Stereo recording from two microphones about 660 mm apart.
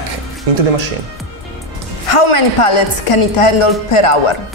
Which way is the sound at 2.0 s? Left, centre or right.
Left.